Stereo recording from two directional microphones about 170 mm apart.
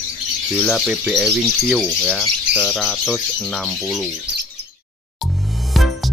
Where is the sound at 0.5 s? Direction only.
Centre (ahead or behind).